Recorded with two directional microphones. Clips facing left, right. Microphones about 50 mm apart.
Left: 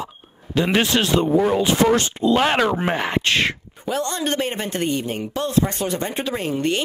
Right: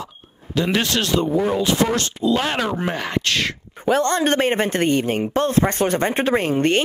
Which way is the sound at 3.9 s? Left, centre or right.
Right.